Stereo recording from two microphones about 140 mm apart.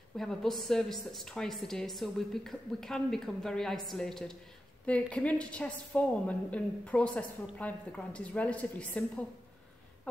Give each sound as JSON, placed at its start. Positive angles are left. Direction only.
{"t": 0.2, "sound": "a woman's voice", "side_deg": 0}